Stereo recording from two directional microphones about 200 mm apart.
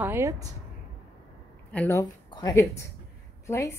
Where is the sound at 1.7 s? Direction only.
15° left (ahead or behind).